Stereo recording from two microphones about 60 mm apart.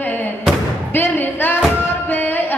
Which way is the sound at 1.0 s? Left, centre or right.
Left.